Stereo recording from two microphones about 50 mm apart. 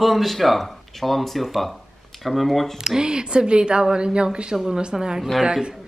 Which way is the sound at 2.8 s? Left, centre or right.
Centre.